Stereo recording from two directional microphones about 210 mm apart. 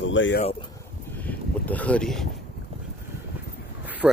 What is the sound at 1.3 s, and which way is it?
Speech, 5° left (ahead or behind).